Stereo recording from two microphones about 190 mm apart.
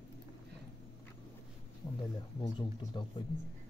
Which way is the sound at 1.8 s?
20° left (ahead or behind).